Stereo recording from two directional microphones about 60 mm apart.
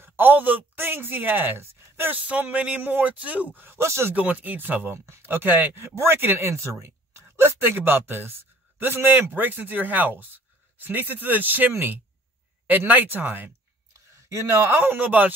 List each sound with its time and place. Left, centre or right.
0.0 s speech: right
2.1 s speech: right
4.1 s speech: right
4.9 s speech: right
14.3 s speech: right